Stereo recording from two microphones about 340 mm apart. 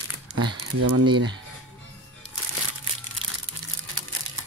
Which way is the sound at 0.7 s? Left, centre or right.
Right.